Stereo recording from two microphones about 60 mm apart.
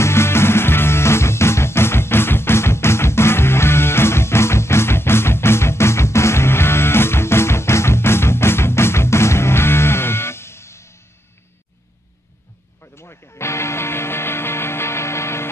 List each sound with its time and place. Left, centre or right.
0.0 s music: left
12.8 s music: left